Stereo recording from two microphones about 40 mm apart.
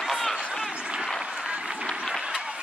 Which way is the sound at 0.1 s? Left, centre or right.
Centre.